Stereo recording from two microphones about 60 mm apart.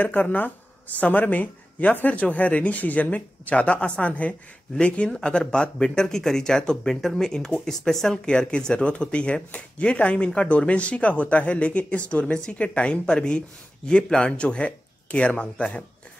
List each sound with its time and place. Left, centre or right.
0.0 s speech: left